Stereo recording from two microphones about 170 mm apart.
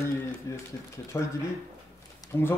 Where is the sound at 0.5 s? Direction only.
20° left (ahead or behind).